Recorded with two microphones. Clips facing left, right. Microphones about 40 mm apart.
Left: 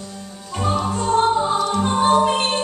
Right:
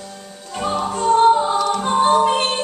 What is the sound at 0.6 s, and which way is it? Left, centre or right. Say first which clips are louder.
Music: even; centre.